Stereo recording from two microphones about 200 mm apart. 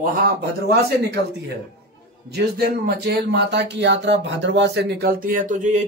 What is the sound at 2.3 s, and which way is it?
Speech, 55° right (ahead or behind).